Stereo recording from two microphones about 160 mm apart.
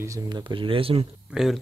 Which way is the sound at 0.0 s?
25° right (ahead or behind).